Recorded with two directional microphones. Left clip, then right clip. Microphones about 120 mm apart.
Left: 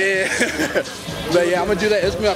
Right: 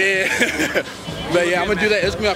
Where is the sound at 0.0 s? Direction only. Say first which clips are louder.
Right 1 dB; 5° right (ahead or behind).